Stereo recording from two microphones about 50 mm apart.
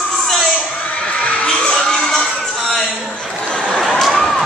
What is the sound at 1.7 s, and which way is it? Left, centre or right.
Music, centre.